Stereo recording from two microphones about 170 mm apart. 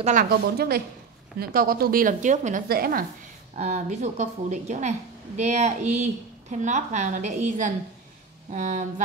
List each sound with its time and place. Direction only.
0.0 s speech: 50° right (ahead or behind)
2.7 s speech: 60° right (ahead or behind)
3.5 s a woman's voice: 40° right (ahead or behind)